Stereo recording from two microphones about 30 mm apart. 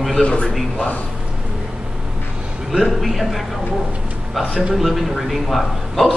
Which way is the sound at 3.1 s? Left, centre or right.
Centre.